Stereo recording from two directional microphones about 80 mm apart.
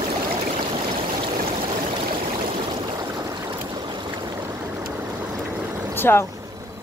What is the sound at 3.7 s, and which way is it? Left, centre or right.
Boat, right.